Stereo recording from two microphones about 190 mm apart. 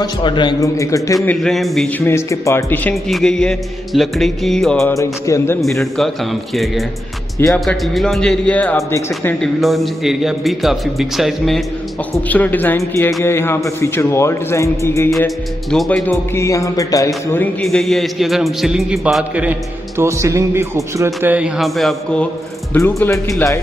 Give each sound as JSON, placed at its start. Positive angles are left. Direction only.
{"t": 0.0, "sound": "a man's voice", "side_deg": 25}
{"t": 1.1, "sound": "a man's voice", "side_deg": 5}
{"t": 2.0, "sound": "a man's voice", "side_deg": 15}
{"t": 4.9, "sound": "speech", "side_deg": 15}
{"t": 5.6, "sound": "a man's voice", "side_deg": 0}
{"t": 7.3, "sound": "speech", "side_deg": 15}
{"t": 7.6, "sound": "a man's voice", "side_deg": 0}
{"t": 15.0, "sound": "a man's voice", "side_deg": 0}
{"t": 20.0, "sound": "a man's voice", "side_deg": -15}